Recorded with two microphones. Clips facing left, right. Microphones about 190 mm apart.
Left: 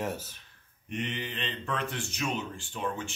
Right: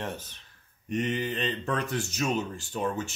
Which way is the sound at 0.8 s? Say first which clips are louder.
Right 6 dB; 40° right (ahead or behind).